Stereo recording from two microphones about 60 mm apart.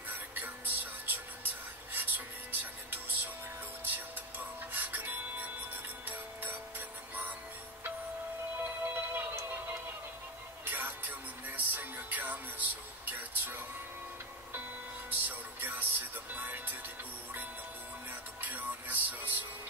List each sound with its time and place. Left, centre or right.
0.3 s music: right
8.8 s music: right
10.6 s music: right
15.0 s music: right
18.4 s music: right